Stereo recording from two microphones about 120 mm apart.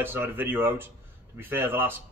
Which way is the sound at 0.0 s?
20° right (ahead or behind).